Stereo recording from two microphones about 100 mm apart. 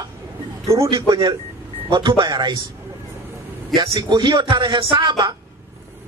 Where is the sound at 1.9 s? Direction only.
55° right (ahead or behind).